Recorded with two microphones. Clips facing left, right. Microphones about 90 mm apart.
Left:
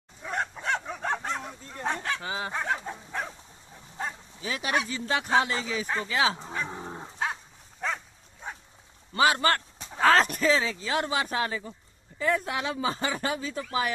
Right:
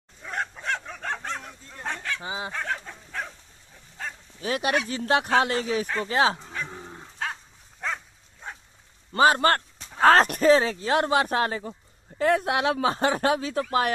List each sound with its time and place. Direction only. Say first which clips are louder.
0.2 s bow-wow: left 1 dB; 5° left (ahead or behind)
1.9 s goose: left 2 dB; 25° left (ahead or behind)
2.2 s fowl: even; 20° right (ahead or behind)
2.5 s dog: left 1 dB; 20° left (ahead or behind)
4.4 s speech: right 4 dB; 55° right (ahead or behind)
6.0 s speech: right 4 dB; 45° right (ahead or behind)
6.4 s dog: left 2 dB; 25° left (ahead or behind)
7.8 s dog: even; centre (ahead or behind)
9.1 s speech: right 4 dB; 45° right (ahead or behind); by 13.9 s 60° right (ahead or behind)